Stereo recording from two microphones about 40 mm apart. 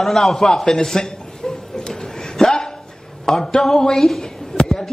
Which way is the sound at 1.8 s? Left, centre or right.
Centre.